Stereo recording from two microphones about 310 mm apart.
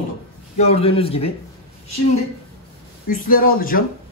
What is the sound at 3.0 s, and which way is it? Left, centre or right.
Speech, left.